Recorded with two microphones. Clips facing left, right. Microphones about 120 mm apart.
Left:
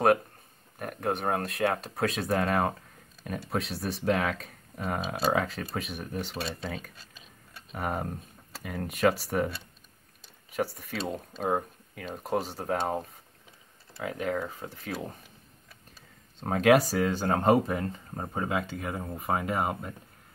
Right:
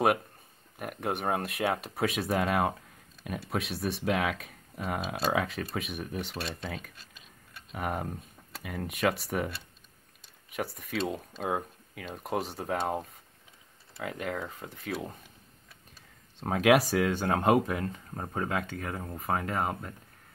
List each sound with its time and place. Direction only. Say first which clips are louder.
0.7 s speech: left 2 dB; 5° right (ahead or behind)
10.5 s speech: left 2 dB; centre (ahead or behind)
14.0 s speech: left 4 dB; centre (ahead or behind)
16.3 s speech: left 2 dB; centre (ahead or behind)
18.1 s speech: left 1 dB; 10° left (ahead or behind)